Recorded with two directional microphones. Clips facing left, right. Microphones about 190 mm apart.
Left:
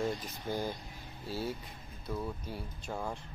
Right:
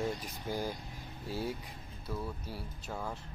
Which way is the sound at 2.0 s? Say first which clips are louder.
Left 2 dB; 5° right (ahead or behind).